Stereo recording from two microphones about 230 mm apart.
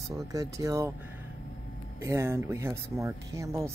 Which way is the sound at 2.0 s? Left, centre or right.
Centre.